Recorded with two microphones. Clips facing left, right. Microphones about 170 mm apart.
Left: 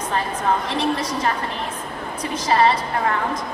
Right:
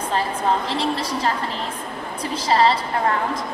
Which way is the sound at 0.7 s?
30° right (ahead or behind).